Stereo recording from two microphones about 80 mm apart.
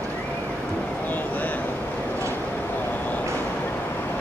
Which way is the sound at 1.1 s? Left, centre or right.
Left.